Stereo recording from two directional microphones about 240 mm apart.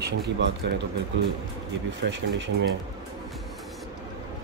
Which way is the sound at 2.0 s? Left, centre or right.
Right.